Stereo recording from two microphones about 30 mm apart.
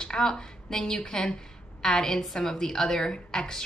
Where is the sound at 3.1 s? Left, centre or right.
Left.